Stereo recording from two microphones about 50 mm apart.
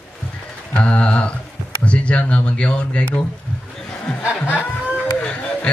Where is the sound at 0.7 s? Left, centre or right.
Left.